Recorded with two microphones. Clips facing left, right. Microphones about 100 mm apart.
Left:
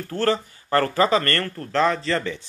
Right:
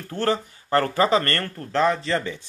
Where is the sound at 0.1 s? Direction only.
15° right (ahead or behind).